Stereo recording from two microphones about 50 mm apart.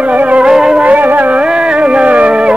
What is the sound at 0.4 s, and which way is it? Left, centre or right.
Music, centre.